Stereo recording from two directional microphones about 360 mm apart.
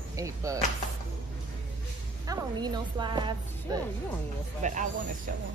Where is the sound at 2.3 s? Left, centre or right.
Centre.